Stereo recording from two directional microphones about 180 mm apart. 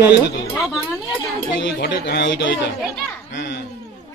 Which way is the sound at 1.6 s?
65° left (ahead or behind).